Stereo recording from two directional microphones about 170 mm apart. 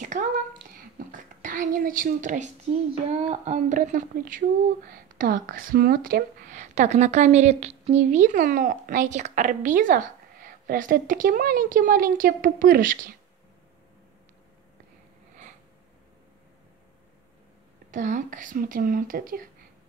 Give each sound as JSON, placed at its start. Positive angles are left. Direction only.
{"t": 0.0, "sound": "a woman's voice", "side_deg": -45}
{"t": 17.9, "sound": "speech", "side_deg": -50}